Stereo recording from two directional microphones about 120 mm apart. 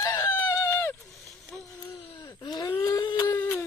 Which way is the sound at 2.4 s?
35° left (ahead or behind).